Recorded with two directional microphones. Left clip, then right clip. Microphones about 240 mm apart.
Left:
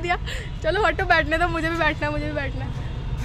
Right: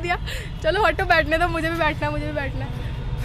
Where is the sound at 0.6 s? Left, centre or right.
Centre.